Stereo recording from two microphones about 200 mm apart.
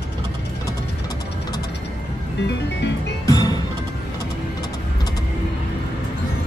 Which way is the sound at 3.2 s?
15° left (ahead or behind).